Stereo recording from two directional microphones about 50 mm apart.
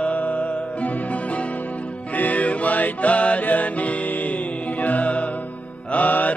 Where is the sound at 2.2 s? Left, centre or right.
Left.